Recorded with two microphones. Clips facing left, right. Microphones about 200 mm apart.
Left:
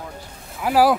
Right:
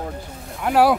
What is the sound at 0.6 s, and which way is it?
Speech, centre (ahead or behind).